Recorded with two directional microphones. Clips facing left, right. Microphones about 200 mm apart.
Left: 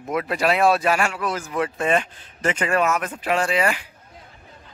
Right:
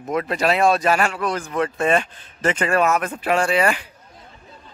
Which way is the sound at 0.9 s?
35° right (ahead or behind).